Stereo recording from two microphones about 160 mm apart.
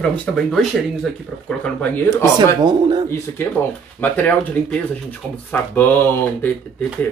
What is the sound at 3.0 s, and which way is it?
Speech, 15° left (ahead or behind).